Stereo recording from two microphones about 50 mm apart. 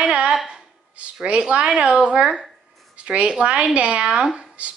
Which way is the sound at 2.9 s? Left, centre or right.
Right.